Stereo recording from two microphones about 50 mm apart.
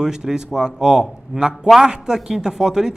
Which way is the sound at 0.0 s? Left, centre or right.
Centre.